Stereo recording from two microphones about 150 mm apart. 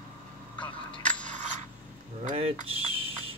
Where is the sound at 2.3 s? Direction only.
40° right (ahead or behind).